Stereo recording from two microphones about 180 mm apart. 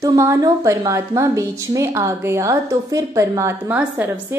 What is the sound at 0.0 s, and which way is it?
A woman's voice, 20° right (ahead or behind).